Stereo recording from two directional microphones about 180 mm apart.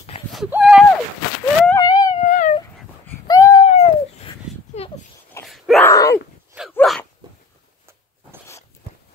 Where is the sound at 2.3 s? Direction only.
45° left (ahead or behind).